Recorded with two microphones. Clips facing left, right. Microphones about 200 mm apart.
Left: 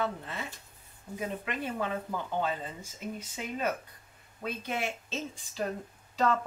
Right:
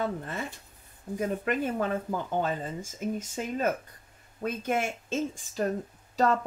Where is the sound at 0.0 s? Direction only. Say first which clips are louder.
Right 3 dB; 50° right (ahead or behind).